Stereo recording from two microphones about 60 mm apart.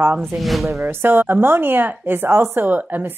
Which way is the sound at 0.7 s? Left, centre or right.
Right.